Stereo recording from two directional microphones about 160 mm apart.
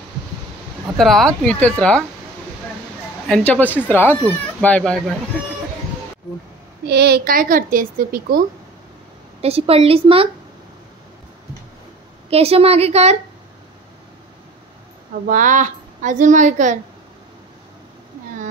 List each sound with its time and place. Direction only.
0.9 s speech: centre (ahead or behind)
3.3 s speech: 5° left (ahead or behind)
6.9 s a woman's voice: 90° right; by 8.5 s 60° right (ahead or behind)
9.4 s a woman's voice: 40° right (ahead or behind)
12.3 s a woman's voice: 40° right (ahead or behind)
15.2 s a woman's voice: 55° right (ahead or behind)